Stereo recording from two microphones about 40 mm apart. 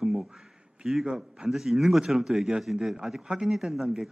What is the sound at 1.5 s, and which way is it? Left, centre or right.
Speech, centre.